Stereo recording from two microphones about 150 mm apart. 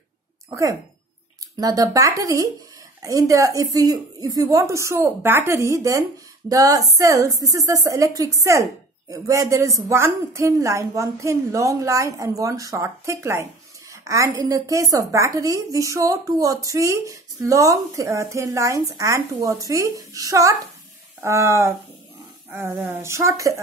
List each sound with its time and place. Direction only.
0.5 s a woman's voice: 20° right (ahead or behind)